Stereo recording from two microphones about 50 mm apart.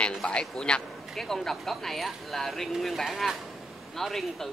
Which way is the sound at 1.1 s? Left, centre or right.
Centre.